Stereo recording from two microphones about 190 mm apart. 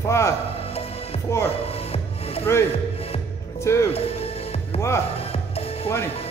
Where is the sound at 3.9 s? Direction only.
30° left (ahead or behind).